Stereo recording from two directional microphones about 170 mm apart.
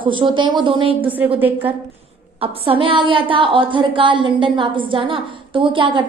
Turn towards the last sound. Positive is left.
turn(degrees=-30)  # may be behind; listen again after turning